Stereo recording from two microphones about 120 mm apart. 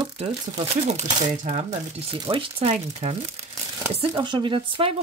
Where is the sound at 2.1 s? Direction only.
45° right (ahead or behind).